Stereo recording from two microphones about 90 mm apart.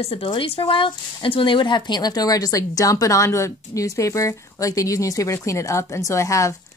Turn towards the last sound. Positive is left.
turn(degrees=35)  # may be behind; listen again after turning